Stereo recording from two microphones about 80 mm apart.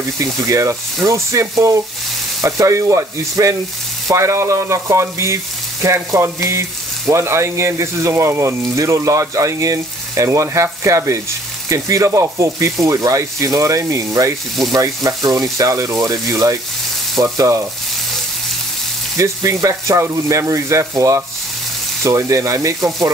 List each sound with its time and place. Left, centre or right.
0.5 s speech: right
19.1 s speech: right